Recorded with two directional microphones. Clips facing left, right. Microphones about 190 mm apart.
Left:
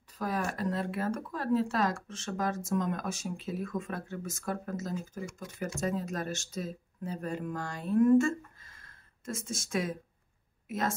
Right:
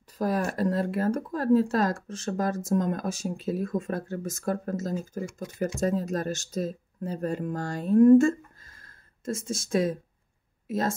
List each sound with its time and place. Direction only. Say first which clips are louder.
0.2 s speech: right 6 dB; 40° right (ahead or behind)